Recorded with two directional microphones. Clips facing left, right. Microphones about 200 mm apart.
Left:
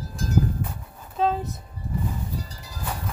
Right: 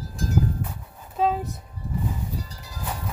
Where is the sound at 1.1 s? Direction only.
10° right (ahead or behind).